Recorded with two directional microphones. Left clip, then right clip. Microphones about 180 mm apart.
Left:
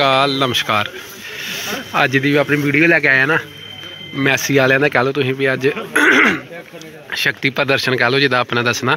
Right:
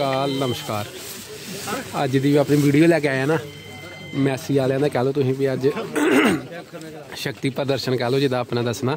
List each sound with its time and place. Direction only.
0.1 s speech: 20° left (ahead or behind)
0.5 s a man's voice: 5° right (ahead or behind)
1.7 s snake: 10° left (ahead or behind)
2.0 s speech: 20° right (ahead or behind)
4.2 s a man's voice: 5° right (ahead or behind)
5.1 s speech: 15° right (ahead or behind)